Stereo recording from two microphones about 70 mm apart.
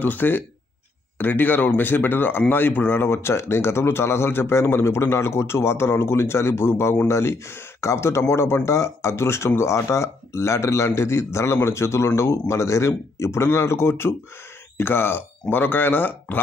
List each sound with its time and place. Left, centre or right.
0.0 s a man's voice: left